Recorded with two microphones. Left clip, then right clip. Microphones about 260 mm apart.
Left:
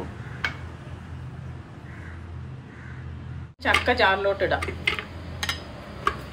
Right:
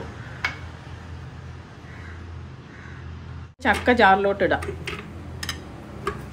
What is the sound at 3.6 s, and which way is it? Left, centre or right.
Speech, right.